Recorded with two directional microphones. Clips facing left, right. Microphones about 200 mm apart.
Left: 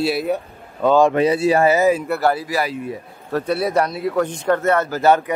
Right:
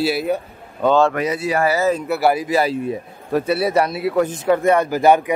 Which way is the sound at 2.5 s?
25° right (ahead or behind).